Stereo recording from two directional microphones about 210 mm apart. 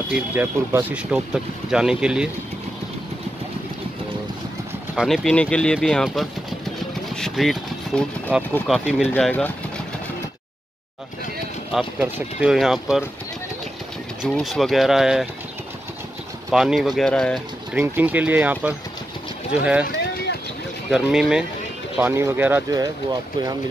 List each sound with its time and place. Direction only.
0.1 s speech: 10° right (ahead or behind)
4.9 s speech: centre (ahead or behind)
9.1 s speech: 10° left (ahead or behind)
12.0 s speech: 5° right (ahead or behind)
14.2 s speech: centre (ahead or behind)
16.4 s speech: centre (ahead or behind)
17.7 s speech: 10° right (ahead or behind)
20.9 s speech: centre (ahead or behind)